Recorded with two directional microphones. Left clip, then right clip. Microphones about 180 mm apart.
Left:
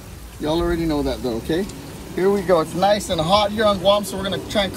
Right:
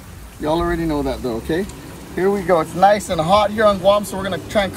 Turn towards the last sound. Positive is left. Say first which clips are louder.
# right 2 dB
turn(degrees=-5)  # may be behind; listen again after turning